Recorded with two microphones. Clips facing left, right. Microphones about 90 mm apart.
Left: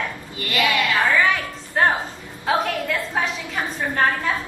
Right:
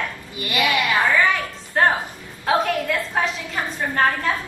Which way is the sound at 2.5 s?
Centre (ahead or behind).